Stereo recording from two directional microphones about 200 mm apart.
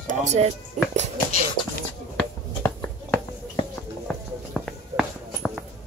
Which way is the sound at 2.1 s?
10° left (ahead or behind).